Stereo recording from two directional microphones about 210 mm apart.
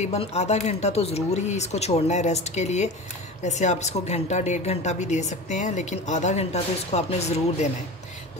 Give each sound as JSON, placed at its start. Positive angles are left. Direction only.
{"t": 0.0, "sound": "speech", "side_deg": 30}